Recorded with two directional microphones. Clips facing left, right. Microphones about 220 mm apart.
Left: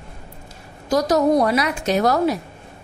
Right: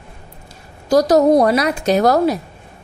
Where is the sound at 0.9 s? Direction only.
35° right (ahead or behind).